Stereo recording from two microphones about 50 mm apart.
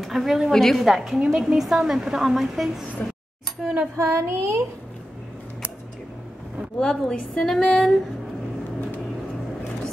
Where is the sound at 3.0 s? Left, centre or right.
Left.